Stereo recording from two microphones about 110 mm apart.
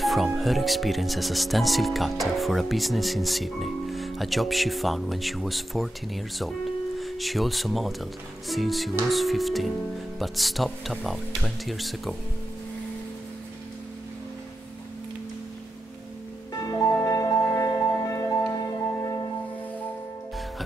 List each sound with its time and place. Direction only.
0.0 s music: centre (ahead or behind)
0.4 s speech: centre (ahead or behind)
16.6 s music: 35° left (ahead or behind)